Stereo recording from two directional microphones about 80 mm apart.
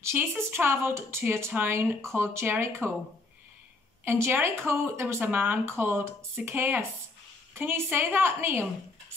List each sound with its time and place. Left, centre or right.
0.0 s speech: right
4.0 s speech: right